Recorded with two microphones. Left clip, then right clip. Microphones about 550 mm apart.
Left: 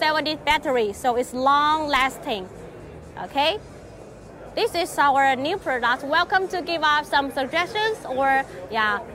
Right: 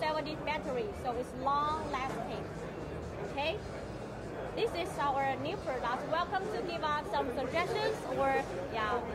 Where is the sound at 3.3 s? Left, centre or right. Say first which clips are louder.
Left 14 dB; left.